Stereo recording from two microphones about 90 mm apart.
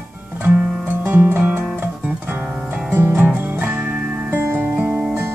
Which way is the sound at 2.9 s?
20° right (ahead or behind).